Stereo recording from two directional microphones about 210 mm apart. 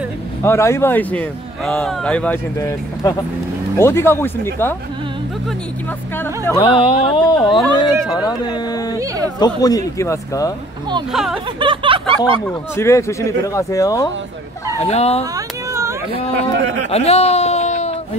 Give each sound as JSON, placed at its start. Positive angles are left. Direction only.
{"t": 0.4, "sound": "speech", "side_deg": 15}
{"t": 6.1, "sound": "speech", "side_deg": 10}
{"t": 6.6, "sound": "speech", "side_deg": 25}
{"t": 11.1, "sound": "speech", "side_deg": 0}
{"t": 11.6, "sound": "a sound", "side_deg": -25}
{"t": 12.2, "sound": "speech", "side_deg": 10}
{"t": 14.8, "sound": "speech", "side_deg": 30}
{"t": 15.3, "sound": "a sound", "side_deg": -15}
{"t": 16.5, "sound": "a sound", "side_deg": -55}
{"t": 16.9, "sound": "speech", "side_deg": 30}